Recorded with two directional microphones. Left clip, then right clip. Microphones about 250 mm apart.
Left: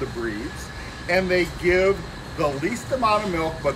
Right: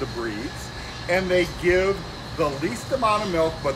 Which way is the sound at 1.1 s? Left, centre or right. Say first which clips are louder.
Even; centre.